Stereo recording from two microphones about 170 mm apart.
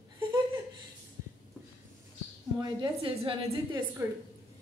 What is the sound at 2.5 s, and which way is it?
A woman's voice, 30° right (ahead or behind).